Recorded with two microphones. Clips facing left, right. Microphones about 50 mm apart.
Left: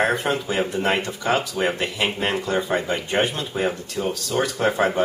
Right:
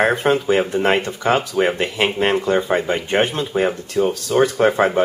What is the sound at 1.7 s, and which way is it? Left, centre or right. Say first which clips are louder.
Speech: right 4 dB; centre.